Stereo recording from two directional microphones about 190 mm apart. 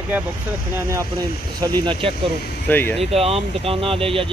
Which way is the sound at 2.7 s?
10° left (ahead or behind).